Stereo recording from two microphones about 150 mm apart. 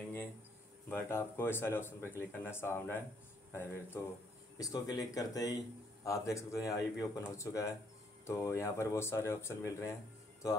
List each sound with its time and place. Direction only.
0.8 s speech: 15° left (ahead or behind)